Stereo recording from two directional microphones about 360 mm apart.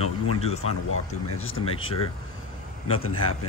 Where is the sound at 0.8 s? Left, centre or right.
Left.